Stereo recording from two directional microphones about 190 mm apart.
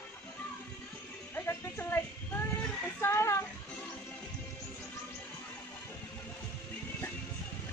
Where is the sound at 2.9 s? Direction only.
15° left (ahead or behind).